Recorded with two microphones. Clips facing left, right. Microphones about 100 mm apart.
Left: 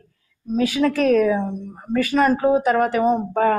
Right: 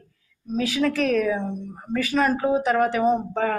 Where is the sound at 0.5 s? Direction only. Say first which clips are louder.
Left 4 dB; 45° left (ahead or behind).